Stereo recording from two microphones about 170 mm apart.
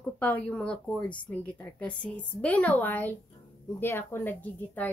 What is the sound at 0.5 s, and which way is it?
Speech, 5° left (ahead or behind).